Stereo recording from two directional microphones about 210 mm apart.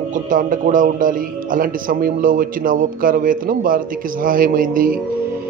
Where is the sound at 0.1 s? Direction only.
40° right (ahead or behind).